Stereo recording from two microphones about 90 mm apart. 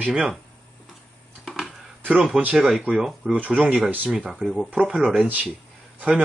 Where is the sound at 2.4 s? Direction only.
15° right (ahead or behind).